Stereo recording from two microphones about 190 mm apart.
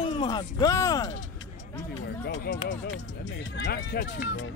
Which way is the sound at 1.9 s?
75° left (ahead or behind).